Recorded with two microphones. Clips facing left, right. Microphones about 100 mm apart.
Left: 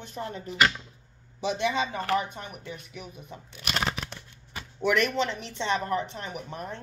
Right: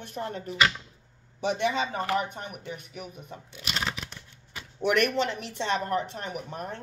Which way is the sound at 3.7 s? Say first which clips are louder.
Left 3 dB; 45° left (ahead or behind).